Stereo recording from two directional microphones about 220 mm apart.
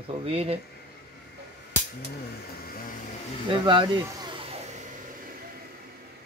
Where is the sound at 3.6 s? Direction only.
20° right (ahead or behind).